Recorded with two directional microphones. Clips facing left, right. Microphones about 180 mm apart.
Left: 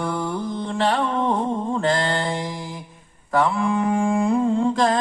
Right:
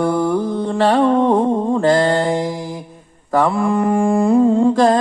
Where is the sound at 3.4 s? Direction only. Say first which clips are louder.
Right 4 dB; 35° right (ahead or behind).